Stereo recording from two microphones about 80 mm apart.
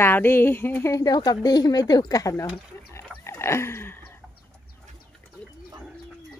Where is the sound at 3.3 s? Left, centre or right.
Left.